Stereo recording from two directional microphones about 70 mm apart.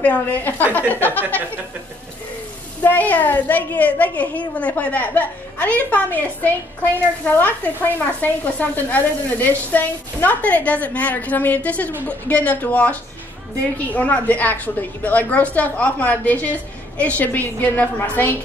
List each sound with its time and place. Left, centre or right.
0.0 s a woman's voice: left
2.8 s a woman's voice: left